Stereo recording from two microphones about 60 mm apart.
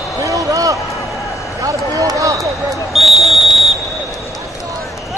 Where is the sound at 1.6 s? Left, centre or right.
Right.